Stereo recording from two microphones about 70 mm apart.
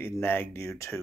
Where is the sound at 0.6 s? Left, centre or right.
Left.